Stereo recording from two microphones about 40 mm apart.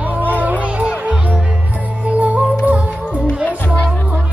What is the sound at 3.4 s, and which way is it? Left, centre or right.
Music, left.